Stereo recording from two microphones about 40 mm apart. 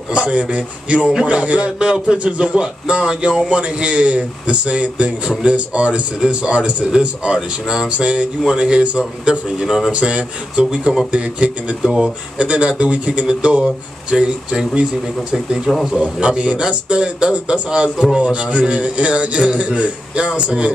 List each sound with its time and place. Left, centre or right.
0.1 s a man's voice: right
9.9 s a man's voice: right
11.8 s speech: centre
12.4 s a man's voice: right
14.1 s speech: centre
15.9 s a man's voice: right